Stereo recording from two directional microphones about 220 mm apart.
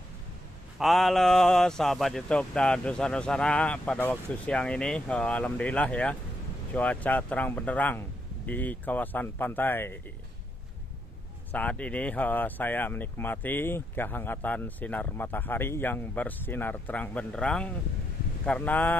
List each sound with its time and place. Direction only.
0.7 s speech: centre (ahead or behind)
11.5 s speech: 5° left (ahead or behind)